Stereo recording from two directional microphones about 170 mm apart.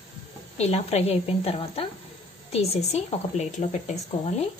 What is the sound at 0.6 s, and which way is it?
Speech, 40° left (ahead or behind).